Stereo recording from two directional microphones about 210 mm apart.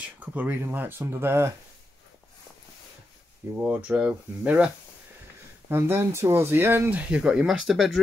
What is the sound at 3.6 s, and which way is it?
Speech, 5° right (ahead or behind).